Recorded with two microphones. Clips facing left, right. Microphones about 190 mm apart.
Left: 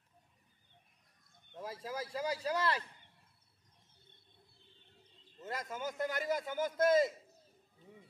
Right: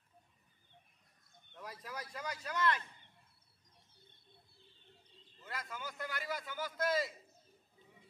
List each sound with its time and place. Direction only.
1.6 s speech: 25° left (ahead or behind)
5.4 s a man's voice: 45° left (ahead or behind)